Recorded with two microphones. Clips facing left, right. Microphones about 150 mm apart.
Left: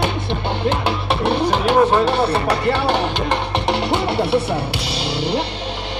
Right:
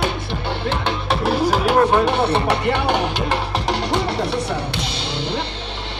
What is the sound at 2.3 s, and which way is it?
Music, 20° right (ahead or behind).